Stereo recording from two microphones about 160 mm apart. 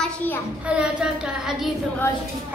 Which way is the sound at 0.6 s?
5° right (ahead or behind).